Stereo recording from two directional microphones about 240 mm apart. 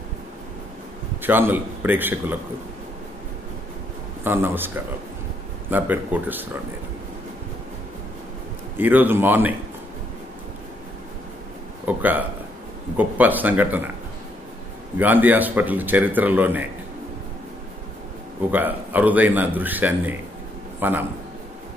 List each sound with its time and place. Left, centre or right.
1.2 s speech: centre
4.2 s speech: centre
8.7 s speech: centre
11.8 s speech: centre
15.0 s speech: centre
18.5 s speech: centre